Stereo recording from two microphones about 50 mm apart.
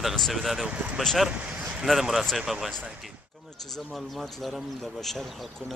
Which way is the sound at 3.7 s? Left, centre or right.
Centre.